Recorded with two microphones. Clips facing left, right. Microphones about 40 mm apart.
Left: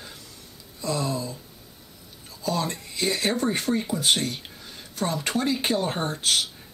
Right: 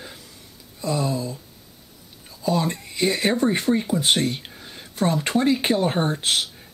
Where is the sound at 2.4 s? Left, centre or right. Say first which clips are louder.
Right 4 dB; centre.